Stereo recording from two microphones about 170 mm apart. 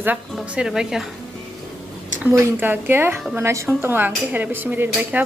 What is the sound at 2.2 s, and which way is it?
Speech, 15° right (ahead or behind).